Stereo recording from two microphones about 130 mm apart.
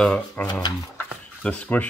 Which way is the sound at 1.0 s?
10° left (ahead or behind).